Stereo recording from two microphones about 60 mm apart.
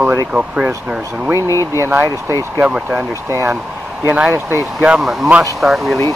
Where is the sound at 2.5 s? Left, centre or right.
Right.